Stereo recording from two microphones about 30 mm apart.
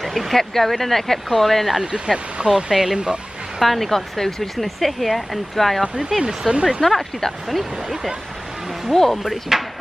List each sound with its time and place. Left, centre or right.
0.0 s a sound: centre
0.4 s speech: centre
2.7 s speech: centre
3.5 s speech: centre
3.9 s speech: centre
4.6 s speech: centre
5.8 s speech: centre
6.5 s speech: right
6.8 s speech: centre
7.4 s speech: centre
8.9 s speech: centre
9.5 s speech: centre